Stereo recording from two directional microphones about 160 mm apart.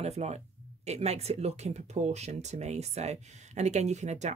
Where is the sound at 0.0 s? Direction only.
40° right (ahead or behind).